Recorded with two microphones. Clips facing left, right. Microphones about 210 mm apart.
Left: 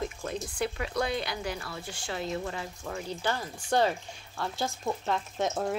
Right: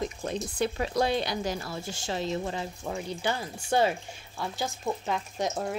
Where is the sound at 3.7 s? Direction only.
10° right (ahead or behind).